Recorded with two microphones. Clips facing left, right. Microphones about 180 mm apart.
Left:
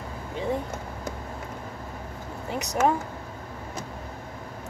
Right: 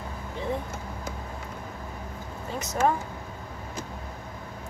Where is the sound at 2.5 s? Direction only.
15° left (ahead or behind).